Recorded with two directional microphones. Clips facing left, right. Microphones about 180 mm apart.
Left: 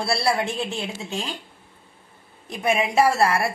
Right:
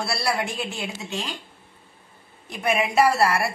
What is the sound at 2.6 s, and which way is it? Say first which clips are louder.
Speech: left 1 dB; 25° left (ahead or behind).